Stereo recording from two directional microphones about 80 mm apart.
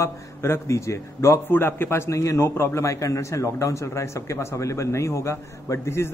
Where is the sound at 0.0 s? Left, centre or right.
Left.